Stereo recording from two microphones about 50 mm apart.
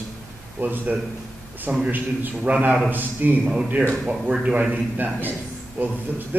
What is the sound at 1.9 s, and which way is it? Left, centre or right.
A man's voice, right.